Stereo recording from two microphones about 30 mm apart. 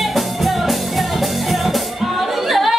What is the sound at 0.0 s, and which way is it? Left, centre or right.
Music, centre.